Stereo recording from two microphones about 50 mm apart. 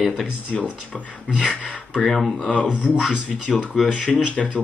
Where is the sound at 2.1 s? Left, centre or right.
Centre.